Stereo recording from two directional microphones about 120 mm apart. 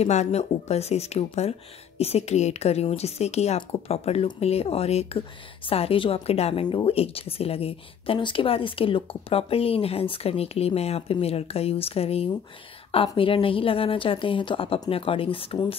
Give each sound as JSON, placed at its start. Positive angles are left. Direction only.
{"t": 0.0, "sound": "speech", "side_deg": 65}
{"t": 6.6, "sound": "speech", "side_deg": 45}